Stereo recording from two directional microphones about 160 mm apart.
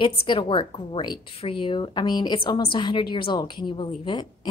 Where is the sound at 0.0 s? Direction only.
35° left (ahead or behind).